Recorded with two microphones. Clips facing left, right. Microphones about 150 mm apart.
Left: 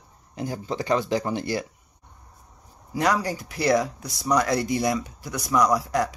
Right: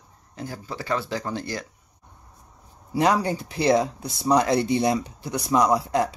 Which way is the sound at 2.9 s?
25° right (ahead or behind).